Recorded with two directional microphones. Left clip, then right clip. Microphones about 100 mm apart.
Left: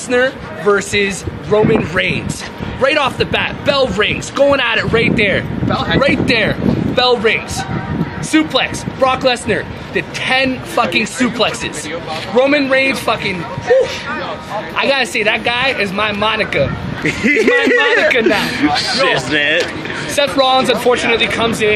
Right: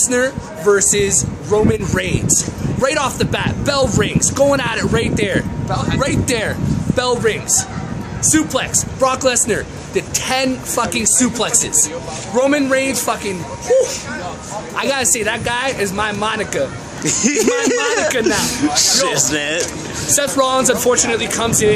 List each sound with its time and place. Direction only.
0.1 s speech: 30° right (ahead or behind)
17.0 s a man's voice: 5° right (ahead or behind)
20.1 s speech: 30° right (ahead or behind)